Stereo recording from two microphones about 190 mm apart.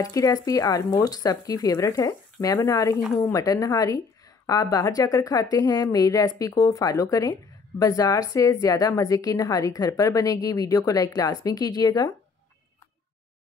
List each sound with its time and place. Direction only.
0.0 s a woman's voice: 20° left (ahead or behind)